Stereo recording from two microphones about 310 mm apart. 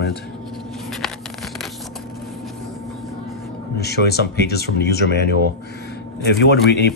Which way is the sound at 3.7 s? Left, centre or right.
Left.